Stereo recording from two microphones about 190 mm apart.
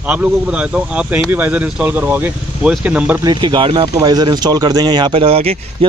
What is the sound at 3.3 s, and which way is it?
Speech, 25° right (ahead or behind).